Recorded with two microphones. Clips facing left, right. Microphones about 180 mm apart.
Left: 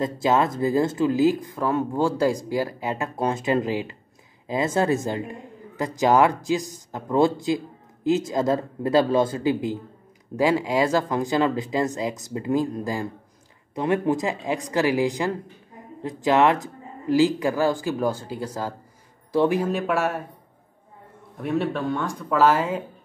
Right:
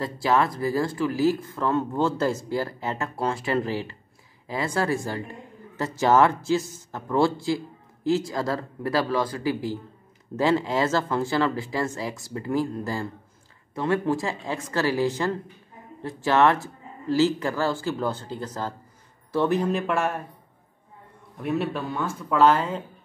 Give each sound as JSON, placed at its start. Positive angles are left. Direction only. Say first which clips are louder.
{"t": 0.0, "sound": "speech", "louder": "left 2 dB", "side_deg": 20}
{"t": 21.4, "sound": "speech", "louder": "left 2 dB", "side_deg": 0}